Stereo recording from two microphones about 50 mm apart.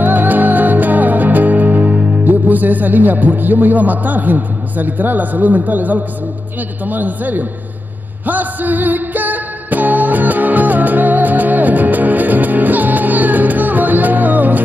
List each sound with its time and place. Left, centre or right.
0.0 s music: right
6.9 s a man's voice: right
8.3 s music: right